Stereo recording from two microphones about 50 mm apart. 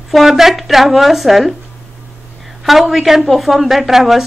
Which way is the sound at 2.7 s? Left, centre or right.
Centre.